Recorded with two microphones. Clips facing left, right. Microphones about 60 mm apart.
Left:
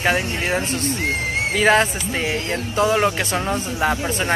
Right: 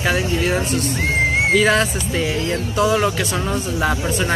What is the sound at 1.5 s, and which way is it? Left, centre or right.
Speech, left.